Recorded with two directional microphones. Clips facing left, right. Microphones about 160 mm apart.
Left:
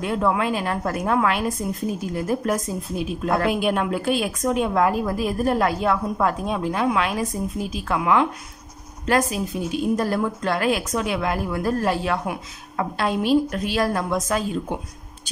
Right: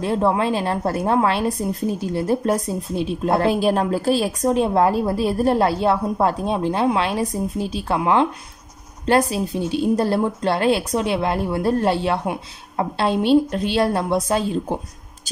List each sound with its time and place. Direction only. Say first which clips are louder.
0.0 s a woman's voice: right 3 dB; 30° right (ahead or behind)